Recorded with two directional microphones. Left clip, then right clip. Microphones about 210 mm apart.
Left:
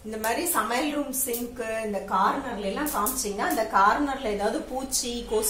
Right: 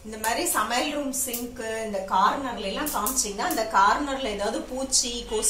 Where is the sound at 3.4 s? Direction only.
45° left (ahead or behind).